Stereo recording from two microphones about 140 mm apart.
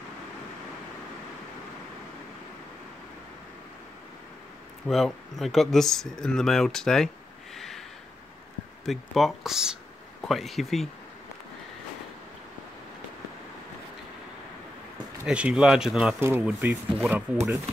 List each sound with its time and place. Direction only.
4.8 s speech: centre (ahead or behind)
7.5 s a sound: centre (ahead or behind)
8.8 s speech: centre (ahead or behind)
15.2 s speech: 5° right (ahead or behind)